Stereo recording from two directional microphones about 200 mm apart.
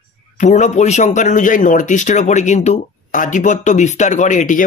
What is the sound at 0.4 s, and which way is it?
Speech, 35° left (ahead or behind).